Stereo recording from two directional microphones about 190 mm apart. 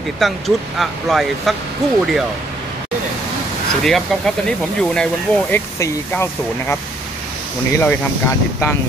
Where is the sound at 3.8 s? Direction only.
Centre (ahead or behind).